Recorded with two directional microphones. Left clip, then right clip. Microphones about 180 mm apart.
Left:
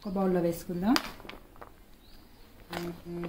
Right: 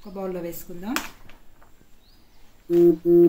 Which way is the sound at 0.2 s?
40° left (ahead or behind).